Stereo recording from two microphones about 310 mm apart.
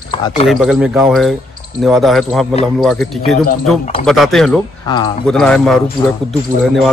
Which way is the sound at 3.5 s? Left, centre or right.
Centre.